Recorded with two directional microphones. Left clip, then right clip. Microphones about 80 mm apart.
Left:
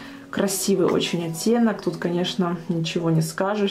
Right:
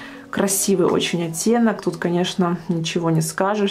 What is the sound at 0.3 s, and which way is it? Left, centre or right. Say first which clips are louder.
Speech: right 3 dB; right.